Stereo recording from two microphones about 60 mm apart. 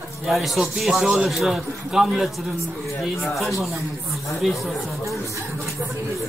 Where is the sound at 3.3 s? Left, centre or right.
Centre.